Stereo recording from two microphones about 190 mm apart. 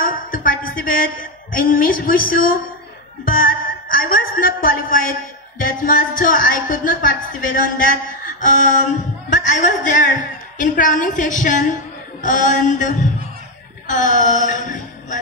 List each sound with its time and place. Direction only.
0.0 s a woman's voice: 50° left (ahead or behind)
12.2 s mantra: 45° left (ahead or behind)
13.8 s speech: 40° left (ahead or behind)